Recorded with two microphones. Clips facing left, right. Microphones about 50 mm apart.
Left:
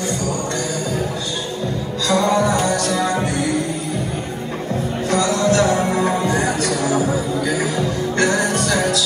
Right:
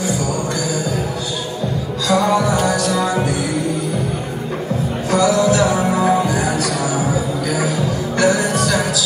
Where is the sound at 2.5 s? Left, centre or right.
Left.